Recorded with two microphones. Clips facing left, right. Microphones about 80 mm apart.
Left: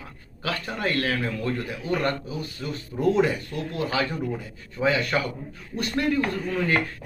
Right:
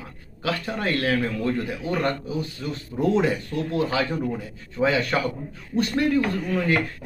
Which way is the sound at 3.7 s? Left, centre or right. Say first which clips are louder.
Right 2 dB; right.